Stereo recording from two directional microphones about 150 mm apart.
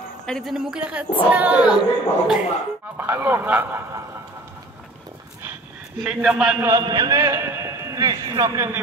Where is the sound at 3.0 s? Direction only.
15° right (ahead or behind).